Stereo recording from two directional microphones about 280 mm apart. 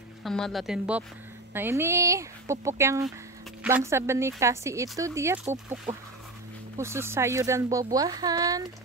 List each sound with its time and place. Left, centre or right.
0.2 s speech: centre
5.9 s speech: right
6.8 s speech: centre